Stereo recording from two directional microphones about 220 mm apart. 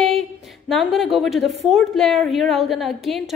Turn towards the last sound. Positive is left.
turn(degrees=0)  # may be behind; listen again after turning